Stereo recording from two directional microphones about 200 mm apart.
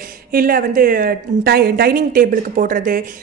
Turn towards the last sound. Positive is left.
turn(degrees=-45)  # may be behind; listen again after turning